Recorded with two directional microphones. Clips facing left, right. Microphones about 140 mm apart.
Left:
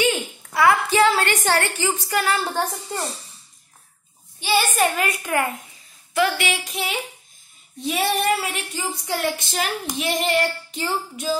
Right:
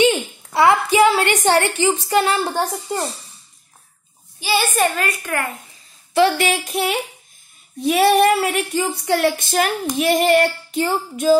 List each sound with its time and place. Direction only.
0.5 s child singing: 25° right (ahead or behind)
0.8 s a woman's voice: 15° right (ahead or behind)
4.4 s a woman's voice: 5° right (ahead or behind)
4.9 s a woman's voice: 15° left (ahead or behind)
6.1 s a woman's voice: 30° right (ahead or behind)
6.4 s a sound: 50° right (ahead or behind)